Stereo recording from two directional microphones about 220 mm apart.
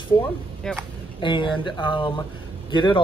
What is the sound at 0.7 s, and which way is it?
Speech, centre (ahead or behind).